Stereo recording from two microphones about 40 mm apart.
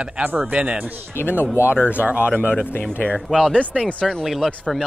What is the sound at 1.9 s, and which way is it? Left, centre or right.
Speech, right.